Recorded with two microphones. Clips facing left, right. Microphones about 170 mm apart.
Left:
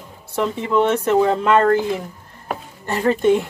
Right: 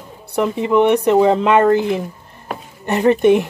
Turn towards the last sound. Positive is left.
turn(degrees=-20)  # may be behind; listen again after turning